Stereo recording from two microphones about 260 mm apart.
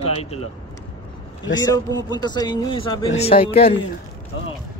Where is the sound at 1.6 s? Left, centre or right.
Centre.